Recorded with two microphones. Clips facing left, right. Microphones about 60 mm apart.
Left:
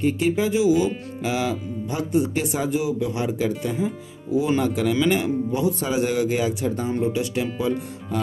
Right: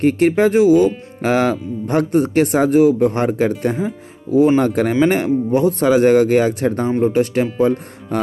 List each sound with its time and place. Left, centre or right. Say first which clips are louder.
0.0 s speech: right 8 dB; right